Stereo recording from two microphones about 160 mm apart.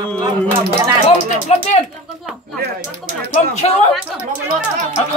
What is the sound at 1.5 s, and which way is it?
Speech, 45° left (ahead or behind).